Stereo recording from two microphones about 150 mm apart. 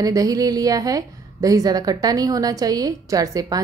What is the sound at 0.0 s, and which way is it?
A woman's voice, 25° right (ahead or behind).